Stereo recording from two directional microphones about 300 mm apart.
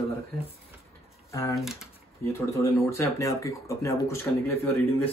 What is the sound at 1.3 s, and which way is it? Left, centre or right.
Speech, centre.